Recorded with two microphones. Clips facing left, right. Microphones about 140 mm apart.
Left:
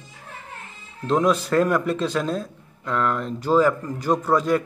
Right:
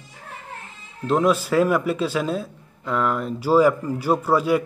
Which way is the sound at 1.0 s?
5° right (ahead or behind).